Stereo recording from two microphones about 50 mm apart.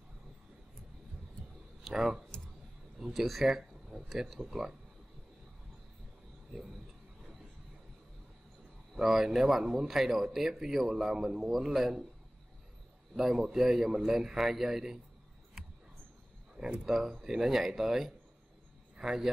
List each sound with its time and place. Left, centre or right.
1.9 s speech: centre
8.9 s speech: centre
13.1 s speech: centre
16.5 s speech: centre
16.8 s speech: centre